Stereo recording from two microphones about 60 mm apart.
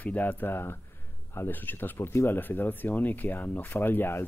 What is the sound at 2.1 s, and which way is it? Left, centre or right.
Speech, left.